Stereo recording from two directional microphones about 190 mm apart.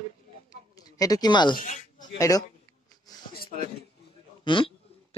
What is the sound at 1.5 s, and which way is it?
Speech, 40° left (ahead or behind).